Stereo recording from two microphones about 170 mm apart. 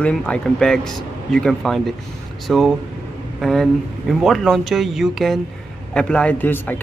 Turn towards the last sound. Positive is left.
turn(degrees=10)  # may be behind; listen again after turning